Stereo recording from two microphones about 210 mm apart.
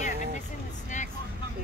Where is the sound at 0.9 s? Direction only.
35° left (ahead or behind).